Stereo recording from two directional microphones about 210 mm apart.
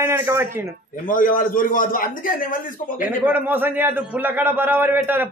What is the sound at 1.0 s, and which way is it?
A man's voice, 40° left (ahead or behind).